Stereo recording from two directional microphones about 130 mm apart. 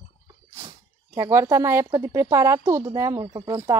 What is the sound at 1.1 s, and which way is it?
A woman's voice, 25° right (ahead or behind).